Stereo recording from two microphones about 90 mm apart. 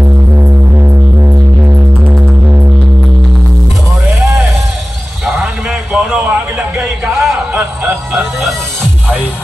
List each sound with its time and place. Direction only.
0.4 s music: 30° right (ahead or behind)
4.2 s a sound: 5° right (ahead or behind)
8.1 s music: centre (ahead or behind)